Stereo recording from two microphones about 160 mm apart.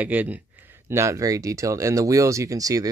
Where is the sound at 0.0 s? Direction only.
10° right (ahead or behind).